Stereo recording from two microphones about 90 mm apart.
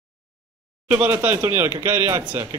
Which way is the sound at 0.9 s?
20° right (ahead or behind).